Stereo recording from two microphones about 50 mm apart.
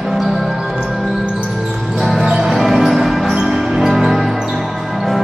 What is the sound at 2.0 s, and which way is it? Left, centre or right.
Music, centre.